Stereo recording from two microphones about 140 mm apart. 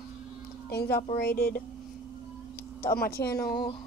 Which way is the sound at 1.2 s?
90° left.